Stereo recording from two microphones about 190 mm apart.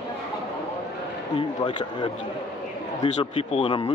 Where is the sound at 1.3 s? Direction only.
25° left (ahead or behind).